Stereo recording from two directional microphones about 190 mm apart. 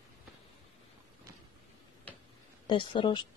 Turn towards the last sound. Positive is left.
turn(degrees=25)  # may be behind; listen again after turning